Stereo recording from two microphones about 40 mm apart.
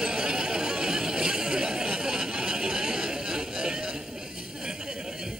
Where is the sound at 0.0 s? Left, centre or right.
Centre.